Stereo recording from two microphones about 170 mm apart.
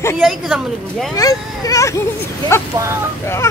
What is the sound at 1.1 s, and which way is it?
Speech, 20° left (ahead or behind).